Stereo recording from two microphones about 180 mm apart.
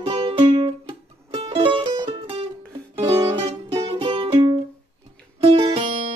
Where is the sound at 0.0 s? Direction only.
30° right (ahead or behind).